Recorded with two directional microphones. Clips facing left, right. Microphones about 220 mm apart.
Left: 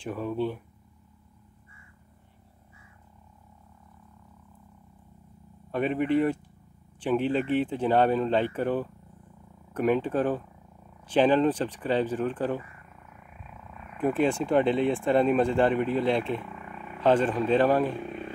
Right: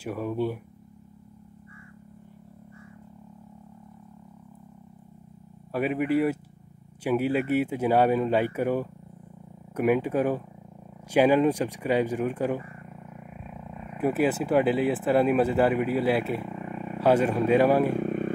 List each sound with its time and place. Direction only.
0.0 s speech: 10° right (ahead or behind)
5.7 s speech: 5° right (ahead or behind)
12.6 s wild animals: 30° right (ahead or behind)
14.0 s speech: 5° right (ahead or behind)
16.3 s vehicle: 30° right (ahead or behind)
17.0 s speech: 10° right (ahead or behind)
17.9 s vehicle: 50° right (ahead or behind)